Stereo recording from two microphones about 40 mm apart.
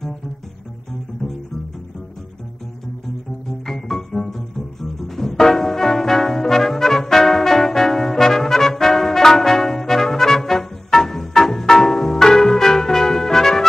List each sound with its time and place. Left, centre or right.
3.6 s music: centre